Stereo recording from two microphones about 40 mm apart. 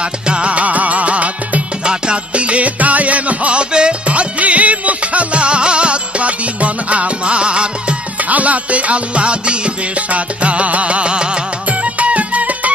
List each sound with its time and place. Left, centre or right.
0.0 s music: right
8.2 s music: right